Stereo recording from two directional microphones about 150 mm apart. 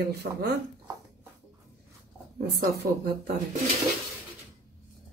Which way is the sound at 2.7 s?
90° right.